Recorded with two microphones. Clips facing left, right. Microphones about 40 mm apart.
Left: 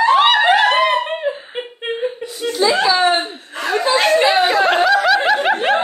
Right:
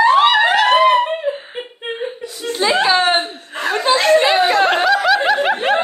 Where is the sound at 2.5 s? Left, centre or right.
Right.